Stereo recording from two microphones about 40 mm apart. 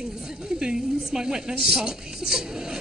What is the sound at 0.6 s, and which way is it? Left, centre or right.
A woman's voice, centre.